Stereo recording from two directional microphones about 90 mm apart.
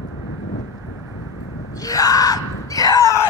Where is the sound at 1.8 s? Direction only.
40° left (ahead or behind).